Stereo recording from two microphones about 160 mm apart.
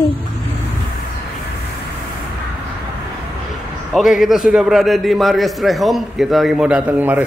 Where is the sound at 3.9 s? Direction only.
Centre (ahead or behind).